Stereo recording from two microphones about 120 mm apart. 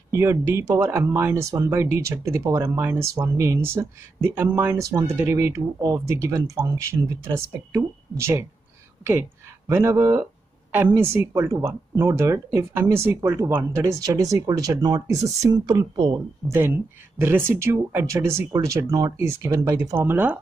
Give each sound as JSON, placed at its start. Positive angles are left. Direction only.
{"t": 0.1, "sound": "speech", "side_deg": -20}
{"t": 9.7, "sound": "speech", "side_deg": -20}
{"t": 16.4, "sound": "speech", "side_deg": -15}
{"t": 20.1, "sound": "speech", "side_deg": -15}